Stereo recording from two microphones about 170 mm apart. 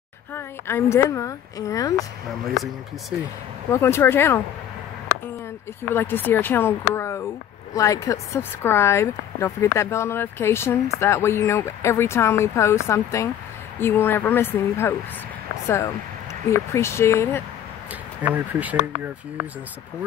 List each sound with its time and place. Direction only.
0.3 s speech: 15° left (ahead or behind)
2.2 s speech: centre (ahead or behind)
3.7 s speech: 15° left (ahead or behind)
5.9 s speech: 10° left (ahead or behind)
16.4 s speech: 15° left (ahead or behind)
18.2 s speech: 10° right (ahead or behind)